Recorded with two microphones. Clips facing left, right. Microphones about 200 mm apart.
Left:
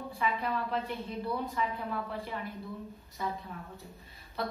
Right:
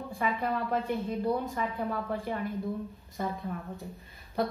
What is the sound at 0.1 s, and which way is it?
A woman's voice, 50° right (ahead or behind).